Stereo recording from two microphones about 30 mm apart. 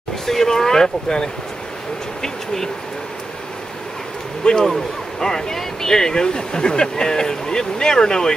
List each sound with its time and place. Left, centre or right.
0.3 s speech: centre
2.2 s a sound: centre
4.5 s speech: left